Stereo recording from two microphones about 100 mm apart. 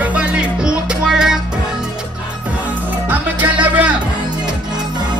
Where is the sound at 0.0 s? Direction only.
10° right (ahead or behind).